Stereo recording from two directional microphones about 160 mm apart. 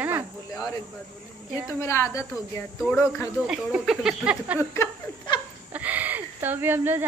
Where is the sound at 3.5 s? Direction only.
5° right (ahead or behind).